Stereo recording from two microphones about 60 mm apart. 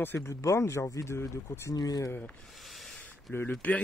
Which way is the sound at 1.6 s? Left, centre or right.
Left.